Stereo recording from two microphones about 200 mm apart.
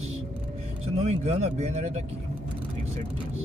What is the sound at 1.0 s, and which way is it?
Speech, 35° right (ahead or behind).